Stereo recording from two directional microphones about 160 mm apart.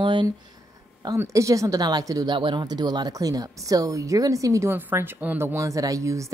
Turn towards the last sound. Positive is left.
turn(degrees=-20)  # may be behind; listen again after turning